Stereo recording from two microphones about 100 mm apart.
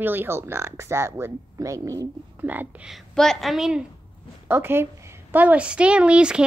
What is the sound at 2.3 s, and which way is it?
Speech, 20° right (ahead or behind).